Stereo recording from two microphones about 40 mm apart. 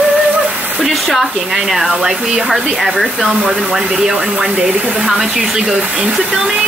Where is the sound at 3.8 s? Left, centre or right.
Centre.